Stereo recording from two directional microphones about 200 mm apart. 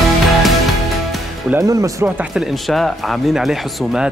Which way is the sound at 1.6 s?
15° right (ahead or behind).